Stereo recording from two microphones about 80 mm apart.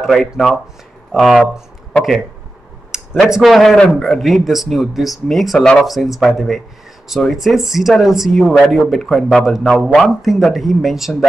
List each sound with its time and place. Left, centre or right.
0.0 s speech: centre
2.9 s speech: centre